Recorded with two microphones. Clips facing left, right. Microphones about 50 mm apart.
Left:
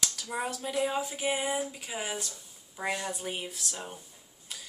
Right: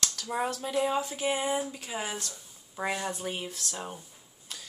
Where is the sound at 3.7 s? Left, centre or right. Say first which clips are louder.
Right 3 dB; centre.